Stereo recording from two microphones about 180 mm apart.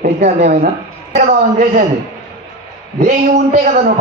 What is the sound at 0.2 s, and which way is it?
Speech, 40° right (ahead or behind).